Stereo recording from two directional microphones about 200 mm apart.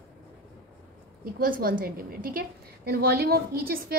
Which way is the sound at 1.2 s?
45° right (ahead or behind).